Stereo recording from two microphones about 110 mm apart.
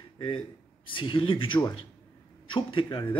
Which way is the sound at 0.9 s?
50° left (ahead or behind).